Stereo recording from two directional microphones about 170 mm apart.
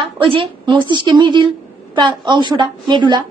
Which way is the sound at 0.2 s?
30° right (ahead or behind).